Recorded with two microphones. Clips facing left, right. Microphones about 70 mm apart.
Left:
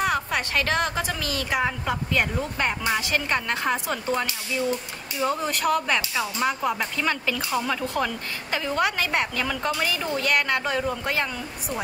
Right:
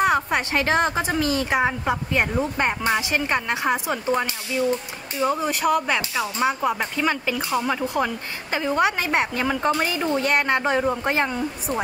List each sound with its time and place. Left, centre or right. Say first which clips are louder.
0.0 s speech: right 4 dB; right
5.2 s speech: right 3 dB; centre; by 11.8 s right